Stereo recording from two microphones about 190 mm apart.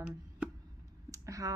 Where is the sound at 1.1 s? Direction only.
15° right (ahead or behind).